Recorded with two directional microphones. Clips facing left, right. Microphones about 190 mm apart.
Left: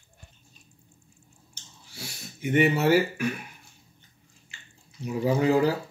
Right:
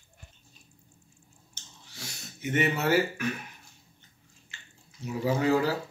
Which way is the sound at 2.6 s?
10° left (ahead or behind).